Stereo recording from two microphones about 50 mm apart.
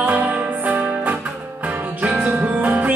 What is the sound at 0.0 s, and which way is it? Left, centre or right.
Music, right.